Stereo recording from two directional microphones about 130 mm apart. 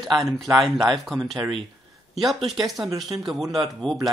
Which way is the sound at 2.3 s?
Centre (ahead or behind).